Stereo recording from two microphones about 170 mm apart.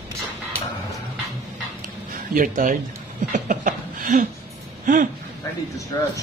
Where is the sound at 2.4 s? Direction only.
50° right (ahead or behind).